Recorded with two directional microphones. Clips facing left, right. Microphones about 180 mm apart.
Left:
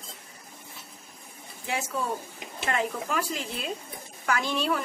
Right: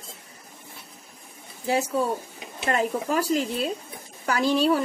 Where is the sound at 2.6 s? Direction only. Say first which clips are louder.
Right 5 dB; 35° right (ahead or behind).